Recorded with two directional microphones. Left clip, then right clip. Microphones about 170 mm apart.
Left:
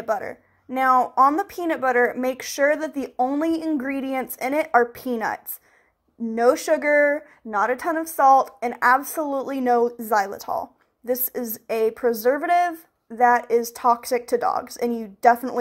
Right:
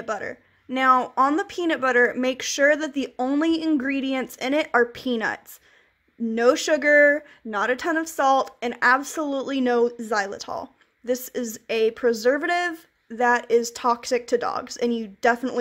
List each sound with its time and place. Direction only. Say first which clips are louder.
0.0 s speech: left 4 dB; 35° right (ahead or behind)